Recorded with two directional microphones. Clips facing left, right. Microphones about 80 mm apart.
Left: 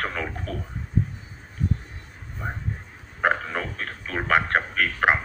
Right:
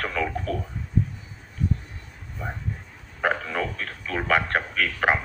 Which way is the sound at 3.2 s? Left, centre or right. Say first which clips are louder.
Left 1 dB; left.